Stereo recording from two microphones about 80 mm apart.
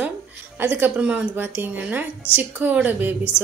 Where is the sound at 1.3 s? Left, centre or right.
Right.